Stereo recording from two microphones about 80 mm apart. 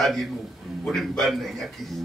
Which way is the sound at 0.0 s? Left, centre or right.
Centre.